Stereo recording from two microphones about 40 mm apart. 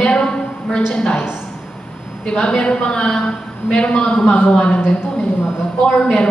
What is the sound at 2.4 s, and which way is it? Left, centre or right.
A woman's voice, left.